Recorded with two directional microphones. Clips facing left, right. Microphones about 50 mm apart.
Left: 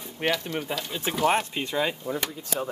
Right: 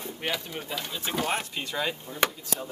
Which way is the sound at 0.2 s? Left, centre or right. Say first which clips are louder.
Left 6 dB; centre.